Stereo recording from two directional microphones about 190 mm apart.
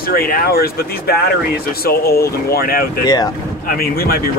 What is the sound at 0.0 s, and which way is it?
Speech, 50° left (ahead or behind).